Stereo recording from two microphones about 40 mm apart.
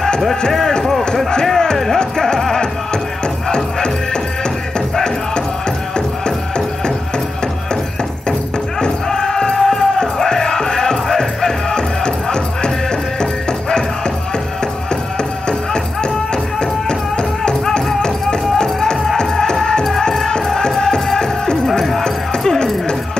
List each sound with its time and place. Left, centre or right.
0.5 s music: centre
8.3 s music: centre
15.1 s music: left
17.6 s music: centre